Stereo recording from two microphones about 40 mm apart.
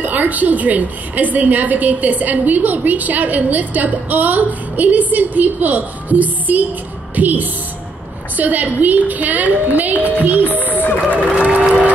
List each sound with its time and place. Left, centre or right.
0.0 s a woman's voice: right
11.3 s applause: right